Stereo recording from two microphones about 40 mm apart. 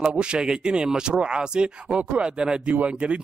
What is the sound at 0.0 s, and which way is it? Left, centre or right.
Speech, right.